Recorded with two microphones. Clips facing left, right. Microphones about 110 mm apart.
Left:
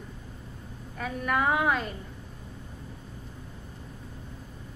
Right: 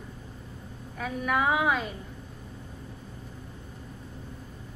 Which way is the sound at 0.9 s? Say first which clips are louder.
Even; centre (ahead or behind).